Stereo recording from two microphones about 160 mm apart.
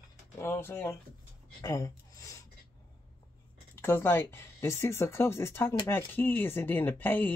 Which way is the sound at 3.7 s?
15° left (ahead or behind).